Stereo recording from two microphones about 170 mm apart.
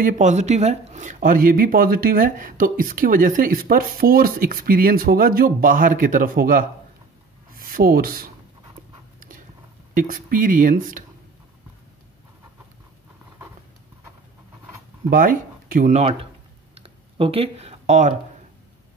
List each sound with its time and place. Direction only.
0.0 s speech: 45° right (ahead or behind); by 8.3 s 60° right (ahead or behind)
9.9 s speech: 55° right (ahead or behind)
15.0 s speech: 55° right (ahead or behind); by 16.3 s 35° right (ahead or behind)
16.7 s computer keyboard: 35° right (ahead or behind)